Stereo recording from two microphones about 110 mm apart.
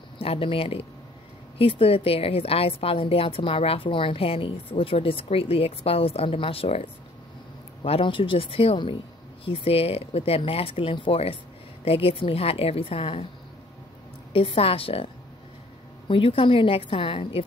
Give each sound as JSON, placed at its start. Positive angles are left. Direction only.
{"t": 0.2, "sound": "a woman's voice", "side_deg": 60}
{"t": 14.3, "sound": "a woman's voice", "side_deg": 55}
{"t": 16.1, "sound": "a woman's voice", "side_deg": 55}